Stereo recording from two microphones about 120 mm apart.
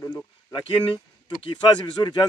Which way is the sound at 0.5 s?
40° left (ahead or behind).